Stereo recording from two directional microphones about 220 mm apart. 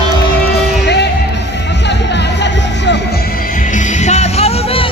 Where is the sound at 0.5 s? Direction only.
50° left (ahead or behind).